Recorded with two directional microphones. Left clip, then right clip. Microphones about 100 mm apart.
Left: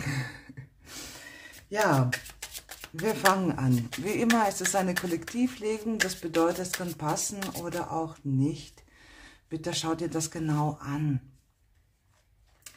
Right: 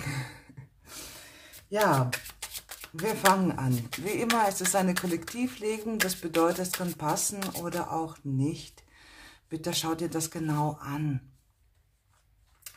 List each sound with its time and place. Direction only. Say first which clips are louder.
0.0 s a sound: left 2 dB; 30° left (ahead or behind)
1.8 s shuffling cards: even; 5° left (ahead or behind)
3.0 s speech: even; 10° left (ahead or behind)